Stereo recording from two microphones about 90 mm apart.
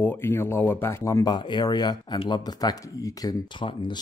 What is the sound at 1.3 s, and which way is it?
Speech, 55° left (ahead or behind).